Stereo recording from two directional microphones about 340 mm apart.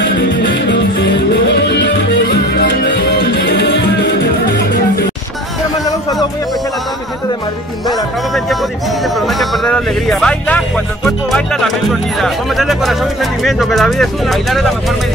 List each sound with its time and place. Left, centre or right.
0.4 s music: left
9.4 s music: centre
11.1 s speech: centre